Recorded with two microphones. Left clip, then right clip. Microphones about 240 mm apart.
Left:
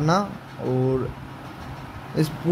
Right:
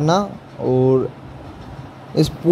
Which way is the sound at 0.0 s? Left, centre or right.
Centre.